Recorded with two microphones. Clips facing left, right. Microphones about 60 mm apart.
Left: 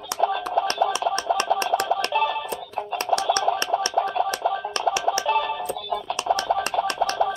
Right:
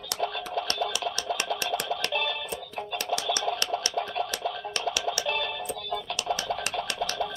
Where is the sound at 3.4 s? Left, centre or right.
Left.